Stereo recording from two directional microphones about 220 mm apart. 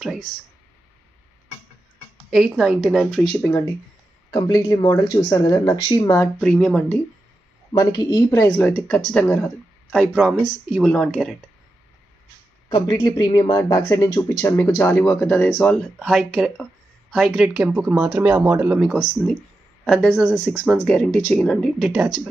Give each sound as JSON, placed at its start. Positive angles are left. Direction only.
{"t": 2.3, "sound": "speech", "side_deg": 0}
{"t": 4.3, "sound": "speech", "side_deg": 15}
{"t": 6.4, "sound": "speech", "side_deg": 5}
{"t": 7.7, "sound": "speech", "side_deg": 20}
{"t": 12.6, "sound": "speech", "side_deg": 20}